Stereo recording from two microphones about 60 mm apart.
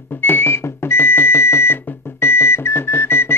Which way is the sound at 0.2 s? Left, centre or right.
Left.